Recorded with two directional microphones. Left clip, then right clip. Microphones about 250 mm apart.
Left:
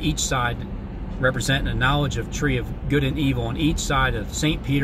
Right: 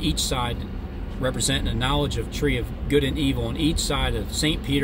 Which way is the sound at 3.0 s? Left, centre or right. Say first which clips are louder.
Left 1 dB; right.